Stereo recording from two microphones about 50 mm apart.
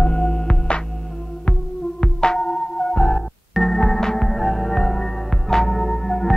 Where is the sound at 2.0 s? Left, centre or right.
Centre.